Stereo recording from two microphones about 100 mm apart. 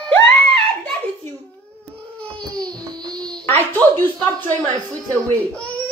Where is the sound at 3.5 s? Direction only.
20° left (ahead or behind).